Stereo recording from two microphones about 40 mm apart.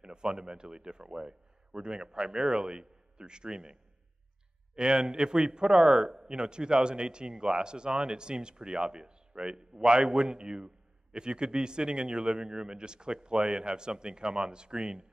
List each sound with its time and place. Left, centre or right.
0.0 s a man's voice: right
4.7 s a man's voice: right